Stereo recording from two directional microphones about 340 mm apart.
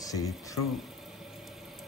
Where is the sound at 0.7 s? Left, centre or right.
Centre.